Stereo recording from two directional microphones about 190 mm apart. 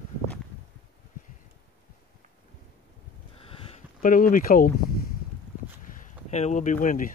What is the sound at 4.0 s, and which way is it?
Speech, 45° left (ahead or behind).